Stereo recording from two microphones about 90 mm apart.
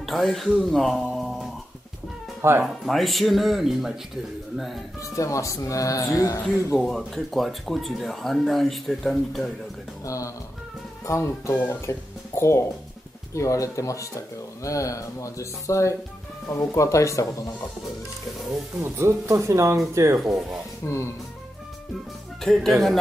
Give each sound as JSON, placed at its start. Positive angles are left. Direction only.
{"t": 0.0, "sound": "speech", "side_deg": 0}
{"t": 2.6, "sound": "speech", "side_deg": 0}
{"t": 5.1, "sound": "speech", "side_deg": 35}
{"t": 6.8, "sound": "speech", "side_deg": 0}
{"t": 10.0, "sound": "speech", "side_deg": 35}
{"t": 18.8, "sound": "speech", "side_deg": -30}
{"t": 20.8, "sound": "speech", "side_deg": 30}
{"t": 22.4, "sound": "speech", "side_deg": 5}